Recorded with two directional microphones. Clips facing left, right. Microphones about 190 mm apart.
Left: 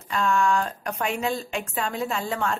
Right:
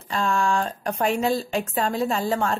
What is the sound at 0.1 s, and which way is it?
Speech, 30° right (ahead or behind).